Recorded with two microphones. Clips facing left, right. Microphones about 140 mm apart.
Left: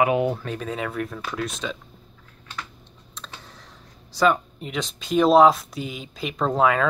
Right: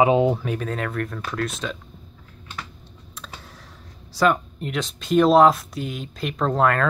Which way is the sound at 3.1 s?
5° right (ahead or behind).